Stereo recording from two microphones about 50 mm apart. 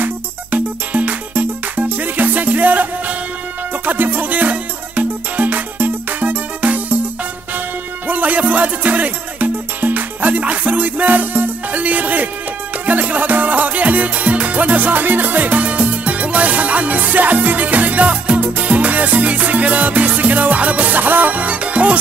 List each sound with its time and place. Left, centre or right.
0.0 s music: right
8.1 s music: right